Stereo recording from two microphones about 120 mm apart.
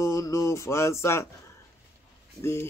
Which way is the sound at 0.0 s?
25° left (ahead or behind).